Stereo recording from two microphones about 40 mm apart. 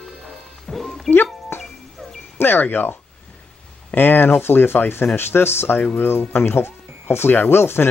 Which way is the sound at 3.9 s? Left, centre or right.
Left.